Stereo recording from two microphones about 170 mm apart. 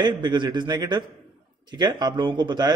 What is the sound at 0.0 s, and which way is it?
Speech, 25° right (ahead or behind).